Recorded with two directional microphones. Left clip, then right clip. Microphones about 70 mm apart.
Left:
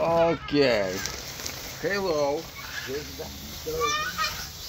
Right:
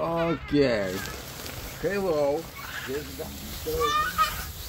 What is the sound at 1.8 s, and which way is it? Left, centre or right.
Speech, right.